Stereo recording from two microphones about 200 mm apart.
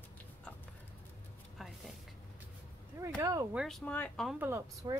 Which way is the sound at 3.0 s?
15° right (ahead or behind).